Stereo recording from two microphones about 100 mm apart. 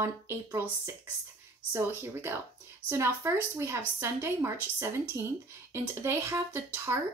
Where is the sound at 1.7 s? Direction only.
25° right (ahead or behind).